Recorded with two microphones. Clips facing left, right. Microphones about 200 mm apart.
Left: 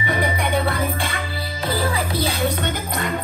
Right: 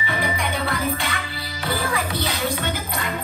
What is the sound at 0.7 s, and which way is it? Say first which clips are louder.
Music: left 1 dB; 30° left (ahead or behind).